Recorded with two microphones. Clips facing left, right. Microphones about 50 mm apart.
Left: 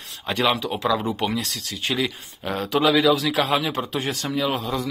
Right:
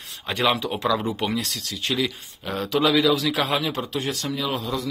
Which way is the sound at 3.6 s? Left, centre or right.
Left.